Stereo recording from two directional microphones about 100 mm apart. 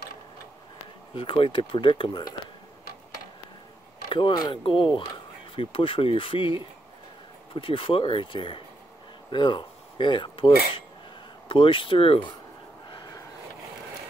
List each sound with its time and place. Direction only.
1.1 s speech: 60° left (ahead or behind)
4.1 s speech: 50° left (ahead or behind)
7.5 s speech: 60° left (ahead or behind)
12.9 s a sound: 40° left (ahead or behind)